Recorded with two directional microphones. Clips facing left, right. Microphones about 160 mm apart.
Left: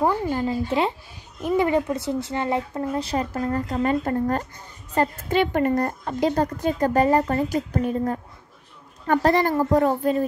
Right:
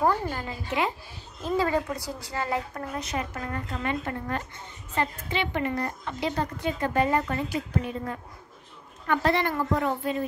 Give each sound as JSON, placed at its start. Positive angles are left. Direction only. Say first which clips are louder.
{"t": 0.0, "sound": "speech", "louder": "left 4 dB", "side_deg": 20}
{"t": 0.5, "sound": "speech", "louder": "left 4 dB", "side_deg": 30}
{"t": 1.4, "sound": "a woman's voice", "louder": "left 5 dB", "side_deg": 20}